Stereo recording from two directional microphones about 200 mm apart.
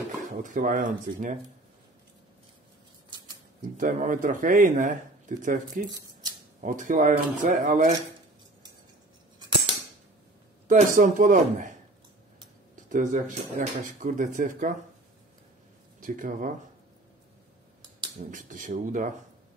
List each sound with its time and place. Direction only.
0.3 s speech: 40° right (ahead or behind)
3.7 s speech: 40° right (ahead or behind)
5.9 s speech: 20° right (ahead or behind)
6.6 s speech: 40° right (ahead or behind)
10.7 s speech: 40° right (ahead or behind)
12.9 s speech: 40° right (ahead or behind)
16.0 s speech: 40° right (ahead or behind)
18.3 s speech: 40° right (ahead or behind)